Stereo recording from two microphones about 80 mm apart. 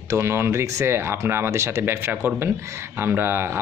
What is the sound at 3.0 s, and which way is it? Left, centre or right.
Speech, right.